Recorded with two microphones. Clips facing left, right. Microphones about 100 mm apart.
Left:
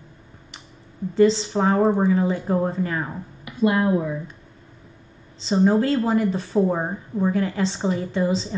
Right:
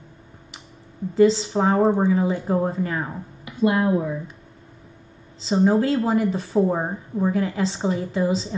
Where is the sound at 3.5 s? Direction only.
20° right (ahead or behind).